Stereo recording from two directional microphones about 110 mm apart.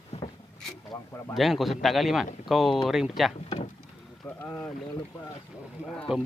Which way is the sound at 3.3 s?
75° left (ahead or behind).